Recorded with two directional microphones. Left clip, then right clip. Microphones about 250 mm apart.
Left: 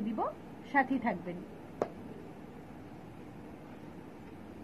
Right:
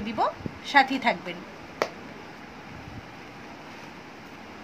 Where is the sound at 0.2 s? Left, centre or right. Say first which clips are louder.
Right 13 dB; right.